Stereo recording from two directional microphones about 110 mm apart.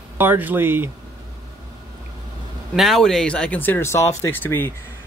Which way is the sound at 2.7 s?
Centre (ahead or behind).